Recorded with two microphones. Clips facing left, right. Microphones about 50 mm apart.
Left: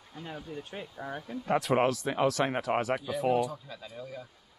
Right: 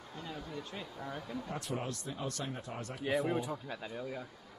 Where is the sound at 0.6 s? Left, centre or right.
Left.